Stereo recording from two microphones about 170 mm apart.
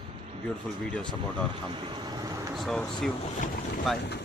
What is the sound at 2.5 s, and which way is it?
A man's voice, centre (ahead or behind).